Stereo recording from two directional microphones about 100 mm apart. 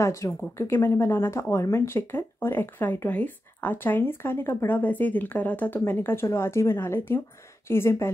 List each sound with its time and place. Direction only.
0.0 s speech: 30° left (ahead or behind)